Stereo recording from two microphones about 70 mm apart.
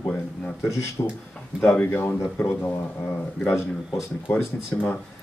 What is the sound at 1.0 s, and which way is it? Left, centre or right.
Speech, left.